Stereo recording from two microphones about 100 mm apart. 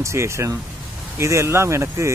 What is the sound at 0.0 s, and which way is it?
Speech, 30° right (ahead or behind).